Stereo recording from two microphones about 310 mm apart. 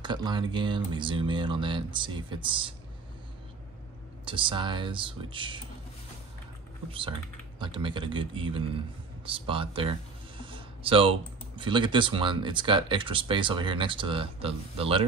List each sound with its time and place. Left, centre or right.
0.0 s speech: centre
4.2 s speech: centre
6.9 s speech: centre